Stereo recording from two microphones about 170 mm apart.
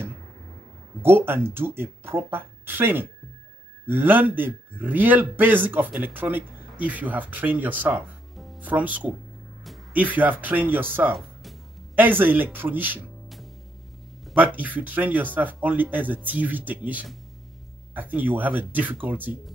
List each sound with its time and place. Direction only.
1.0 s a man's voice: 15° right (ahead or behind)
14.2 s a man's voice: 10° right (ahead or behind)